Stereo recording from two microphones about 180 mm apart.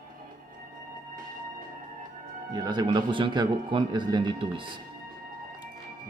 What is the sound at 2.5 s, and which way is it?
Speech, 25° right (ahead or behind).